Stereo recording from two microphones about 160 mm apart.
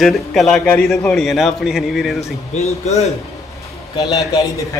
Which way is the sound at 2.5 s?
45° left (ahead or behind).